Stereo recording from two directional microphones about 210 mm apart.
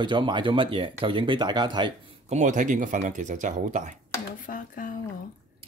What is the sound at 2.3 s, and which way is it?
Speech, 35° right (ahead or behind).